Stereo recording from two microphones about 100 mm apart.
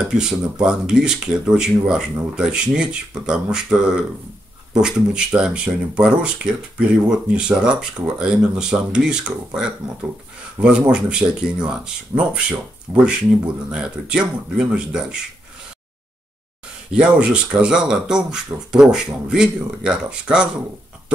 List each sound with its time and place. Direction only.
0.0 s speech: 5° right (ahead or behind)
16.9 s speech: 10° right (ahead or behind)